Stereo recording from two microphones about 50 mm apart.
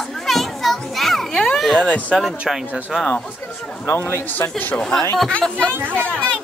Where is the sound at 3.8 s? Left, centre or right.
Left.